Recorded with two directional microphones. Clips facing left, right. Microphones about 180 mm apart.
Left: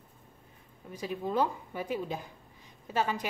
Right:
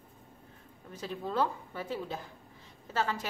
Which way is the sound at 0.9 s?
15° left (ahead or behind).